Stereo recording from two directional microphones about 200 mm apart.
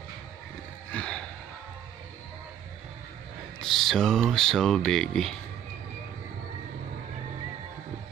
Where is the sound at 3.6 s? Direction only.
Centre (ahead or behind).